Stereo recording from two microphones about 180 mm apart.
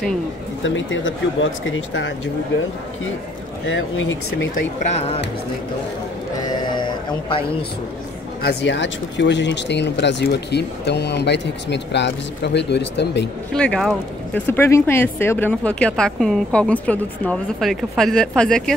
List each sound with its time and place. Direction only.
0.7 s speech: 90° left
3.6 s speech: 90° left
6.7 s a sound: 25° left (ahead or behind)
8.5 s speech: 75° left (ahead or behind)
13.6 s speech: 5° left (ahead or behind)
14.5 s speech: 15° left (ahead or behind)